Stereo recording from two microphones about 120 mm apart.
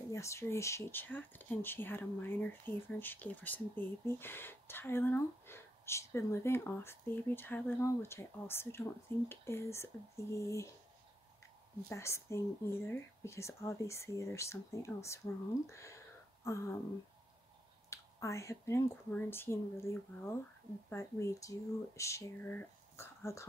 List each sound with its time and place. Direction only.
0.1 s speech: 25° left (ahead or behind)
11.9 s speech: 25° left (ahead or behind)
17.8 s speech: 25° left (ahead or behind)